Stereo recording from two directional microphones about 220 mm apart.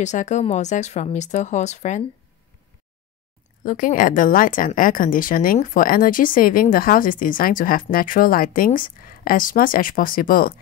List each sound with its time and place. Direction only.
0.0 s a woman's voice: 35° left (ahead or behind)
3.6 s a woman's voice: 35° left (ahead or behind)